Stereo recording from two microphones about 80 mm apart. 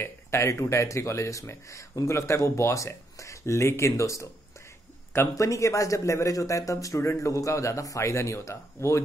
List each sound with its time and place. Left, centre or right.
0.0 s speech: left